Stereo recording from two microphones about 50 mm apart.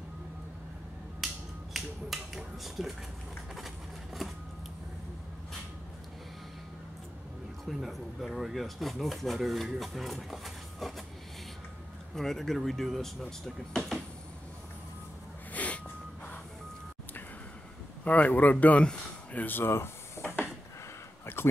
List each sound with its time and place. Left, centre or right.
1.2 s finger snapping: centre
3.5 s a sound: centre
7.6 s speech: centre
12.2 s speech: centre
15.5 s snort: left
18.0 s speech: left
19.3 s speech: left
20.2 s a sound: left
21.4 s a sound: left